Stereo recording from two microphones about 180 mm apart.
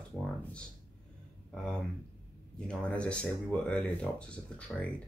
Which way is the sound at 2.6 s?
5° left (ahead or behind).